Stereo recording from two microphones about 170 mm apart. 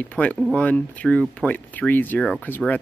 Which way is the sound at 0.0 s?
10° left (ahead or behind).